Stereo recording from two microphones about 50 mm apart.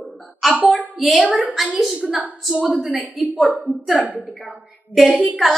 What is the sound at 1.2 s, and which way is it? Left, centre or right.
Speech, right.